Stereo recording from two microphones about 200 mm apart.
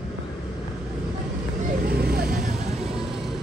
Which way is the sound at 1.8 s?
50° right (ahead or behind).